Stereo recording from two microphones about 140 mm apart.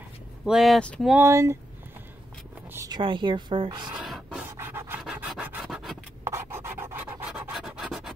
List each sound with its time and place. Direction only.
0.5 s speech: centre (ahead or behind)
1.1 s speech: 20° right (ahead or behind)
2.7 s a sound: 20° right (ahead or behind)
3.0 s speech: 35° right (ahead or behind)
3.9 s a sound: centre (ahead or behind)
4.5 s scratch: 15° right (ahead or behind)
5.0 s rub: 5° right (ahead or behind)
6.2 s scratch: 20° right (ahead or behind); by 8.1 s centre (ahead or behind)